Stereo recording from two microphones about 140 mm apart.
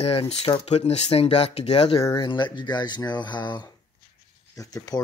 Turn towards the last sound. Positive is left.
turn(degrees=25)  # may be behind; listen again after turning